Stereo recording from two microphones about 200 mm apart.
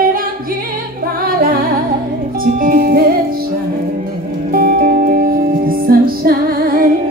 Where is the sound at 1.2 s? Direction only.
45° right (ahead or behind).